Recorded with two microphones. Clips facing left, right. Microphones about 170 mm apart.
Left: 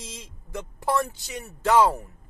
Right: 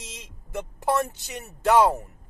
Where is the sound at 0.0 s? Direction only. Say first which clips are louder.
Left 2 dB; 20° right (ahead or behind).